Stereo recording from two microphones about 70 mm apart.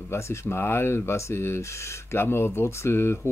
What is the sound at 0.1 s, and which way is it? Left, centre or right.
Speech, left.